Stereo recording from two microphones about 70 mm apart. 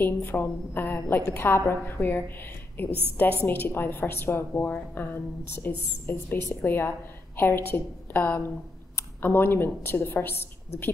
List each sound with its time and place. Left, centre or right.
0.0 s a woman's voice: left
2.9 s a woman's voice: right
3.4 s a woman's voice: left